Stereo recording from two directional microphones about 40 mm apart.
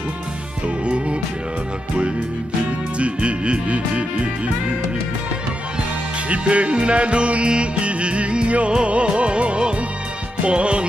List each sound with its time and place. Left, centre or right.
3.0 s music: right
6.2 s music: right